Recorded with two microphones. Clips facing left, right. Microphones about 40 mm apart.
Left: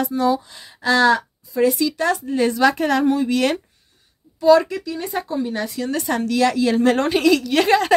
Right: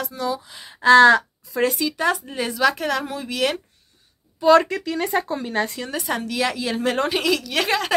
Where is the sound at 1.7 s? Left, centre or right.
Centre.